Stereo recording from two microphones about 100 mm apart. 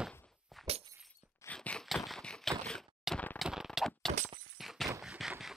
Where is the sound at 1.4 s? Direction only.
10° left (ahead or behind).